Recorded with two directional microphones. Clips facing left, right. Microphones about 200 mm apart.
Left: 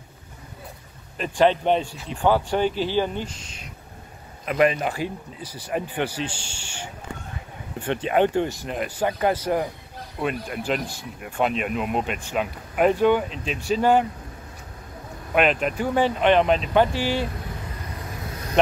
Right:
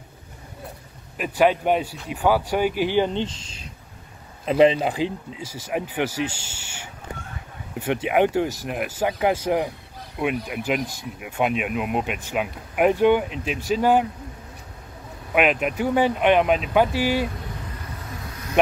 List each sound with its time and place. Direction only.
1.1 s speech: 10° right (ahead or behind); by 4.7 s 30° right (ahead or behind)
4.7 s speech: 15° right (ahead or behind)
7.8 s speech: 10° right (ahead or behind)
15.3 s speech: 5° right (ahead or behind)